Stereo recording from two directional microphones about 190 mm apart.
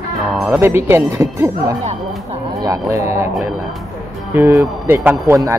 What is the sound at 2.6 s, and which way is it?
Speech, 15° right (ahead or behind).